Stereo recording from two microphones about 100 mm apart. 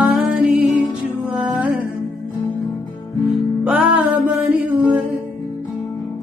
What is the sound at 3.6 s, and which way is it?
Music, 10° right (ahead or behind).